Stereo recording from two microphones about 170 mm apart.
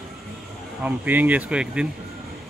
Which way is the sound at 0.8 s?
10° right (ahead or behind).